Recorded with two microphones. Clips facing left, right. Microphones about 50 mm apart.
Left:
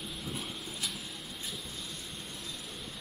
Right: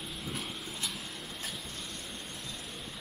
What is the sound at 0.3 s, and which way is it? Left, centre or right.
Vehicle, centre.